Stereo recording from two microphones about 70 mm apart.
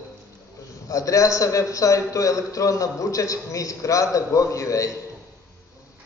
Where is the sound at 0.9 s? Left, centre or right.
Left.